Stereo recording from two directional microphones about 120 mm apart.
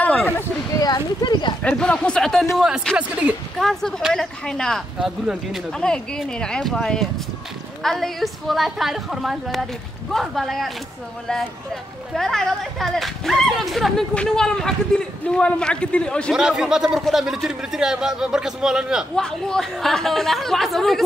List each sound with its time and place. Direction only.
0.0 s a sound: 5° left (ahead or behind)
0.7 s a sound: 35° left (ahead or behind)
1.6 s speech: 10° left (ahead or behind)
3.0 s speech: 10° right (ahead or behind)
3.5 s speech: centre (ahead or behind)
5.2 s speech: 10° right (ahead or behind)
5.7 s speech: 5° left (ahead or behind)
12.1 s speech: 5° left (ahead or behind)
16.3 s speech: 5° right (ahead or behind)